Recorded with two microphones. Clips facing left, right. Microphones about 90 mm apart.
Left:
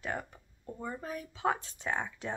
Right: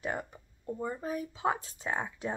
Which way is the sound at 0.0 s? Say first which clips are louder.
Right 2 dB; 20° right (ahead or behind).